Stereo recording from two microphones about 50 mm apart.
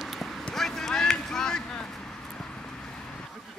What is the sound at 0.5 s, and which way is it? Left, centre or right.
Vehicle, centre.